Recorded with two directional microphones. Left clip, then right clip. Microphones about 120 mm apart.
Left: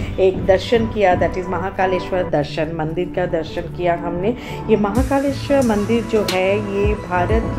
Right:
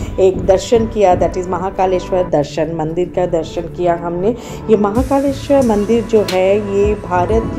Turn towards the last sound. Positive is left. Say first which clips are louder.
# right 4 dB
turn(degrees=-35)  # may be behind; listen again after turning